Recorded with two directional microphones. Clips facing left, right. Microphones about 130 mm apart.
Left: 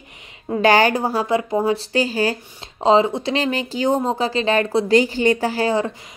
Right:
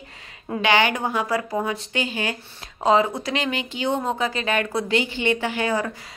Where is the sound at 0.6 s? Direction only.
40° left (ahead or behind).